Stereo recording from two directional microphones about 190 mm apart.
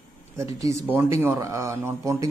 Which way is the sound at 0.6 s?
15° right (ahead or behind).